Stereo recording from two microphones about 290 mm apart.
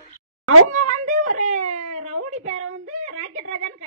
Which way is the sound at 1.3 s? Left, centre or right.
Right.